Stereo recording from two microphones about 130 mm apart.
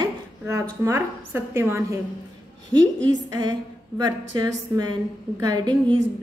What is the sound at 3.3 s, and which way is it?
A woman's voice, 30° right (ahead or behind).